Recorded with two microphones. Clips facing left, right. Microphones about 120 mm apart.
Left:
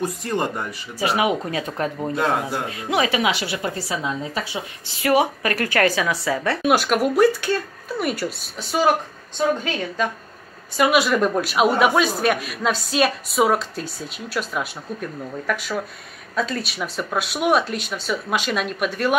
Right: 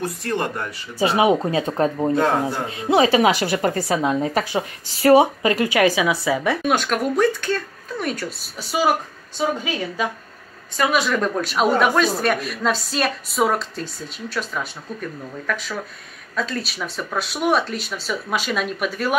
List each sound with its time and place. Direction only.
0.0 s speech: 15° left (ahead or behind)
0.9 s a woman's voice: 30° right (ahead or behind); by 4.6 s 50° right (ahead or behind)
5.0 s speech: 25° right (ahead or behind)
6.6 s speech: 5° left (ahead or behind)
8.5 s speech: 10° right (ahead or behind)
10.8 s speech: 10° left (ahead or behind)